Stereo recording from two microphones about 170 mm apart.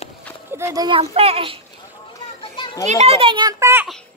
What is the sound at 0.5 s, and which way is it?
A child's voice, 20° right (ahead or behind).